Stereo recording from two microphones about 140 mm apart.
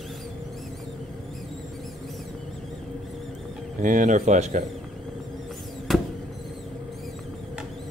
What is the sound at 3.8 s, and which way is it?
Speech, 65° right (ahead or behind).